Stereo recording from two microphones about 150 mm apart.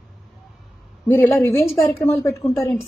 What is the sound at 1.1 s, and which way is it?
A woman's voice, 15° left (ahead or behind).